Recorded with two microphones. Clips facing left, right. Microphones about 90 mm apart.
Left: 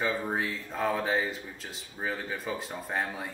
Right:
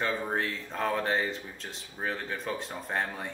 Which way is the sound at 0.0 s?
5° left (ahead or behind).